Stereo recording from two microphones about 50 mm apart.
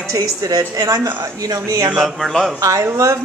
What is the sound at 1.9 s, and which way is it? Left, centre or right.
Speech, centre.